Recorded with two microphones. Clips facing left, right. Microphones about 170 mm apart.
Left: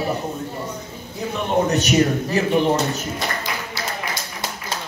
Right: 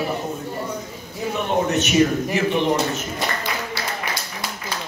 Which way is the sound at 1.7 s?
35° left (ahead or behind).